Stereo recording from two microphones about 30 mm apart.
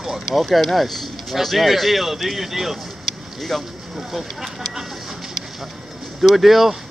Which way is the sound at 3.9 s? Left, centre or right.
Centre.